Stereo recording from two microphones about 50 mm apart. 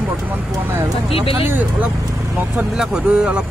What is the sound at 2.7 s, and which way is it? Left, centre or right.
Speech, centre.